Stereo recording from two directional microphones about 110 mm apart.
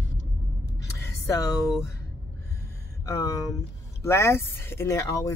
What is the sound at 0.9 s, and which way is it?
Speech, 25° left (ahead or behind).